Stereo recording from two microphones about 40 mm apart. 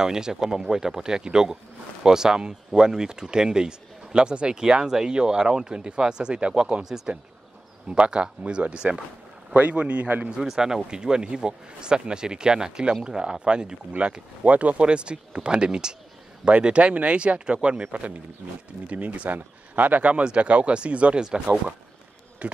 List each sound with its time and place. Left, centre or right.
0.0 s speech: centre
8.1 s speech: right
9.5 s speech: right
10.4 s speech: centre; by 21.2 s right
22.4 s speech: right